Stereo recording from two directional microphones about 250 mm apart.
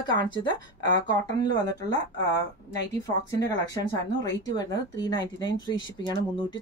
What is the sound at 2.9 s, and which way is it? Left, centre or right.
A woman's voice, centre.